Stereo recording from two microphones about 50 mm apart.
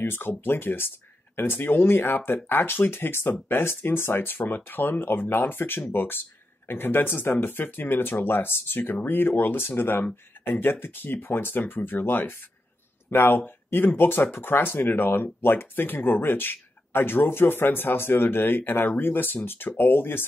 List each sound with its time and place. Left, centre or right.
0.0 s speech: left